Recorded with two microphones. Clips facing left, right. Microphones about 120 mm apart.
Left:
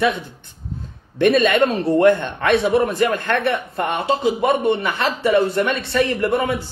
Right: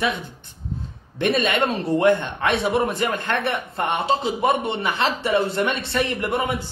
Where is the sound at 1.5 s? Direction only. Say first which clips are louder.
Left 5 dB; 25° right (ahead or behind).